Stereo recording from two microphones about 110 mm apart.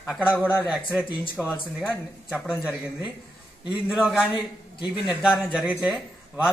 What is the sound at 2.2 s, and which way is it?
Speech, 10° right (ahead or behind).